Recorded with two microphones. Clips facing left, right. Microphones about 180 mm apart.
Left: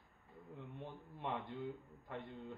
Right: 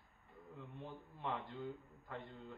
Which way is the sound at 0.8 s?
15° left (ahead or behind).